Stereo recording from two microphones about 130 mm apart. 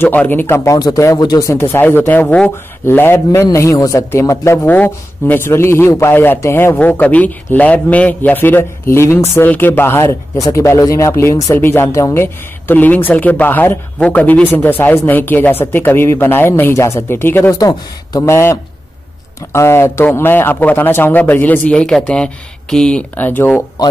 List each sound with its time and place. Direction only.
0.0 s speech: 15° left (ahead or behind)
0.7 s speech: 25° left (ahead or behind)
17.6 s speech: 25° left (ahead or behind)